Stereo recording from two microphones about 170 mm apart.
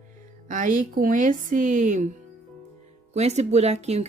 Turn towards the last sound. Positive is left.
turn(degrees=-40)  # may be behind; listen again after turning